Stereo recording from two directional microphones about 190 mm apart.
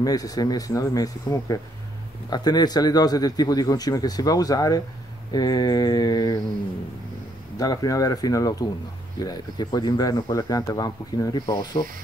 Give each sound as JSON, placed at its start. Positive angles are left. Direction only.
{"t": 0.0, "sound": "a man's voice", "side_deg": 20}
{"t": 7.5, "sound": "a man's voice", "side_deg": 20}